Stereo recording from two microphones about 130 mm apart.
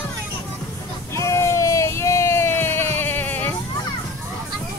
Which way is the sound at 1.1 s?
20° left (ahead or behind).